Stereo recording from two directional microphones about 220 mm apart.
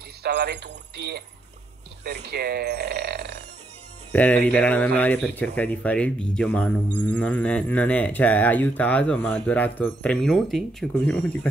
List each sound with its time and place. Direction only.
0.2 s speech: 50° right (ahead or behind)
4.1 s speech: 5° left (ahead or behind)